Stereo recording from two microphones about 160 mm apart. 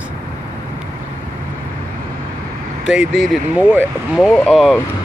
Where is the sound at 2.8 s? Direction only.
Centre (ahead or behind).